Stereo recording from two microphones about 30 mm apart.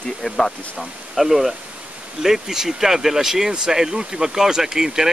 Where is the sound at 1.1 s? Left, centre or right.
Centre.